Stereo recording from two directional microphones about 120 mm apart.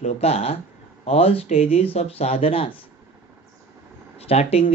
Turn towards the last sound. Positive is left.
turn(degrees=60)  # may be behind; listen again after turning